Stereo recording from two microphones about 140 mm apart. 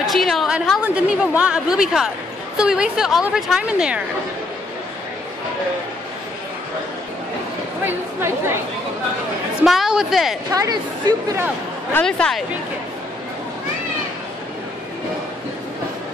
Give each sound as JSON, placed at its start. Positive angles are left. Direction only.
{"t": 0.0, "sound": "a sound", "side_deg": 0}
{"t": 0.8, "sound": "a woman's voice", "side_deg": -10}
{"t": 9.6, "sound": "a woman's voice", "side_deg": -5}
{"t": 10.5, "sound": "speech", "side_deg": -25}
{"t": 11.9, "sound": "a woman's voice", "side_deg": 5}